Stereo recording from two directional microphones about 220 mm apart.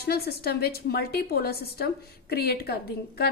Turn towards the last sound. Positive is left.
turn(degrees=45)  # may be behind; listen again after turning